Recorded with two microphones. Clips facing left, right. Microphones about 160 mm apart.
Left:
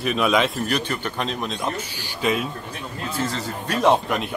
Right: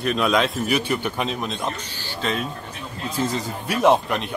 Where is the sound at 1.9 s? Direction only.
10° left (ahead or behind).